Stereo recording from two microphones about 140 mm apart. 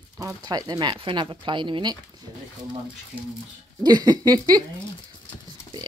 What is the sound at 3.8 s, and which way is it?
Speech, 30° right (ahead or behind).